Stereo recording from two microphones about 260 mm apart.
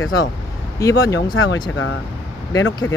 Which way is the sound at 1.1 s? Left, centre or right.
Left.